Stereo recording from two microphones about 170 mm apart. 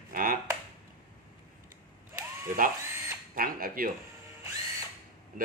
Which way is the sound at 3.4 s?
55° right (ahead or behind).